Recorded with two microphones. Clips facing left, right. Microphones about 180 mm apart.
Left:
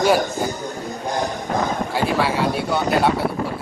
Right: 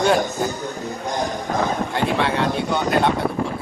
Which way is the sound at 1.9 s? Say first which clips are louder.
Left 1 dB; 5° left (ahead or behind).